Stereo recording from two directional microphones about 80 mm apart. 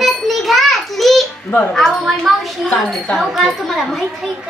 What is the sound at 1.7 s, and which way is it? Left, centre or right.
A child's voice, centre.